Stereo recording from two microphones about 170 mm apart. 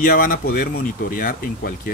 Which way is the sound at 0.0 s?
55° left (ahead or behind).